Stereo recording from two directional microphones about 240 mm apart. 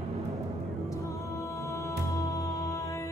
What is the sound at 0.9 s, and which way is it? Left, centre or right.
Music, centre.